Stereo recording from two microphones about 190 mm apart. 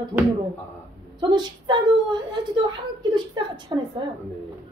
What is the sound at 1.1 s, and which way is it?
A woman's voice, 25° right (ahead or behind).